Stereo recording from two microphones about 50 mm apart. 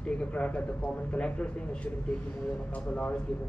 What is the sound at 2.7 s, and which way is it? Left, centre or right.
Speech, left.